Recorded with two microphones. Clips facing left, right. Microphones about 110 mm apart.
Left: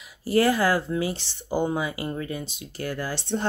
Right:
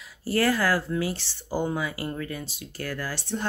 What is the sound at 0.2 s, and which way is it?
Speech, 20° left (ahead or behind).